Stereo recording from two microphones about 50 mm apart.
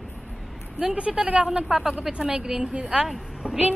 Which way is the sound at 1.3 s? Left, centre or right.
Centre.